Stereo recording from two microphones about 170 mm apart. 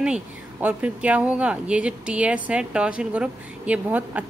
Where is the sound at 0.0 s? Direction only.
10° right (ahead or behind).